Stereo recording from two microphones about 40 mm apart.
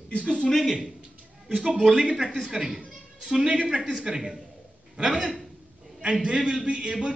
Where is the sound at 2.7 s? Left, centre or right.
Centre.